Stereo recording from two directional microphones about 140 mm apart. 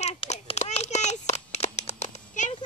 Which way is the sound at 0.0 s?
50° left (ahead or behind).